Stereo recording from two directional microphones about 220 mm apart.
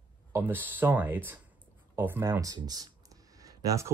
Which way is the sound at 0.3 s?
10° right (ahead or behind).